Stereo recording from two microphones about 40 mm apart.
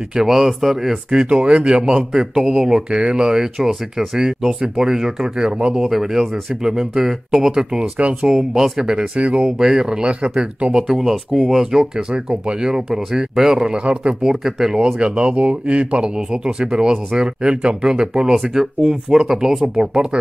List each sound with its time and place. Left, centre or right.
0.1 s speech: centre
1.4 s speech: right
2.0 s speech: centre
5.8 s speech: centre
8.8 s speech: right
9.6 s speech: centre
10.9 s speech: centre
11.8 s speech: right
15.0 s speech: right
16.2 s speech: centre